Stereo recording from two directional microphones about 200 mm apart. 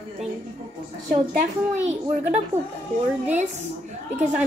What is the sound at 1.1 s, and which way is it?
A woman's voice, 40° right (ahead or behind).